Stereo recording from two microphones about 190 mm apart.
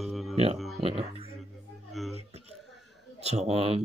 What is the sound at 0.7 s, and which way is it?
Speech, 35° right (ahead or behind).